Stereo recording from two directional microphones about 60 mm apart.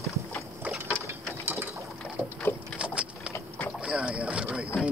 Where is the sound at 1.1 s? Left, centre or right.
Right.